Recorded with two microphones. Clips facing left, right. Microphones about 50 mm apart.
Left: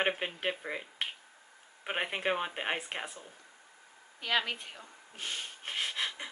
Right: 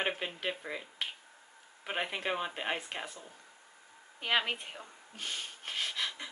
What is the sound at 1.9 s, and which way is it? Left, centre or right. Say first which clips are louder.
Speech: left 2 dB; centre.